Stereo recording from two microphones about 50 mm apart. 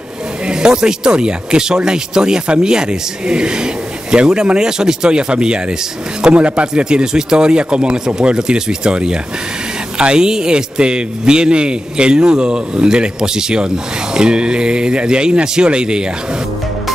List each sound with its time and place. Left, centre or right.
0.5 s a man's voice: centre